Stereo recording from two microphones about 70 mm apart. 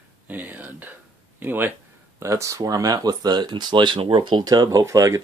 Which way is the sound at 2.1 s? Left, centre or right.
Right.